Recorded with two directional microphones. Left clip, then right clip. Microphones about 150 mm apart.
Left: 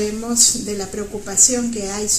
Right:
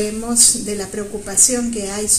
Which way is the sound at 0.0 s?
15° right (ahead or behind).